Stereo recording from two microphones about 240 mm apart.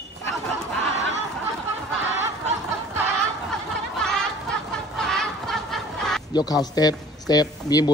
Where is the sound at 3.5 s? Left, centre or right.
Centre.